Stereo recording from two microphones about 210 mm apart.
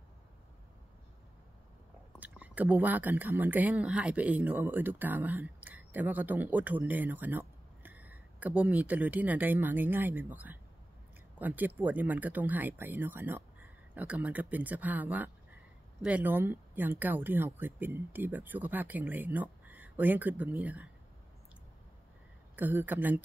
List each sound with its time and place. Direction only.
2.1 s speech: 5° right (ahead or behind)
22.6 s speech: 10° right (ahead or behind)